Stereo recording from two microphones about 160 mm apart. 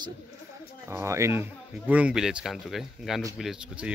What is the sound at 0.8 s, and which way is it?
Speech, 15° right (ahead or behind).